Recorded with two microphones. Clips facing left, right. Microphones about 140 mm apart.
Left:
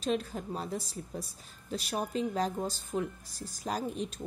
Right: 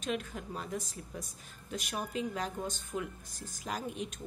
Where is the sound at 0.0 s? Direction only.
35° left (ahead or behind).